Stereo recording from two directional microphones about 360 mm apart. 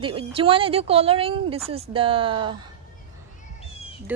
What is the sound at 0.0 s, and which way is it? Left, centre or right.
Speech, centre.